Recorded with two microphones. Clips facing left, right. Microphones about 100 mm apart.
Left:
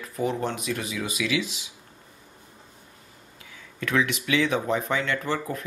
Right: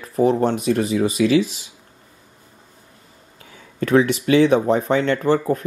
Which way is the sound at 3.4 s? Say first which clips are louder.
Right 8 dB; 40° right (ahead or behind).